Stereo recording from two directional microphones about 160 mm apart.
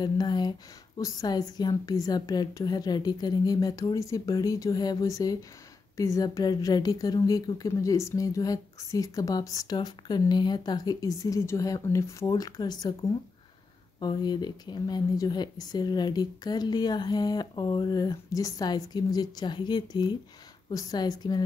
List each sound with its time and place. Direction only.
0.0 s a woman's voice: 25° left (ahead or behind)